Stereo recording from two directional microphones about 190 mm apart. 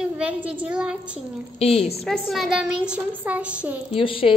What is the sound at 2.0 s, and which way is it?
Speech, centre (ahead or behind).